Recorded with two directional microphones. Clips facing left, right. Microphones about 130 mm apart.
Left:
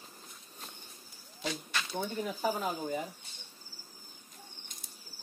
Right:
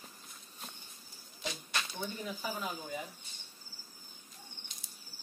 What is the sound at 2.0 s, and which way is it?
Speech, 45° left (ahead or behind).